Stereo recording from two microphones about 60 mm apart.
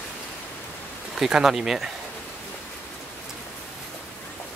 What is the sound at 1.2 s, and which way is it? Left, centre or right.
Speech, centre.